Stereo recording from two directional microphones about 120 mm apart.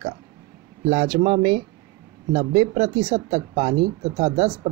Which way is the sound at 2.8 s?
45° right (ahead or behind).